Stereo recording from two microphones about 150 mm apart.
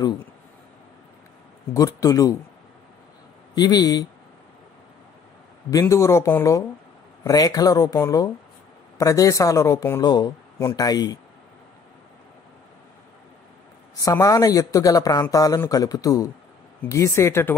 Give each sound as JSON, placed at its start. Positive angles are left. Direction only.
{"t": 1.7, "sound": "speech", "side_deg": 25}
{"t": 3.5, "sound": "speech", "side_deg": 25}
{"t": 5.7, "sound": "speech", "side_deg": 20}
{"t": 13.9, "sound": "speech", "side_deg": 20}